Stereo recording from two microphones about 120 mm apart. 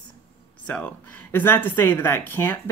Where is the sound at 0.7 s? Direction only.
10° left (ahead or behind).